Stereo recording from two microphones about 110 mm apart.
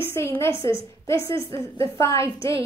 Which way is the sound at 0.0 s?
20° left (ahead or behind).